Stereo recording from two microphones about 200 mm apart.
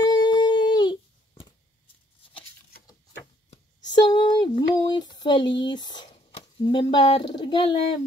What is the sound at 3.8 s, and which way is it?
Speech, 20° left (ahead or behind).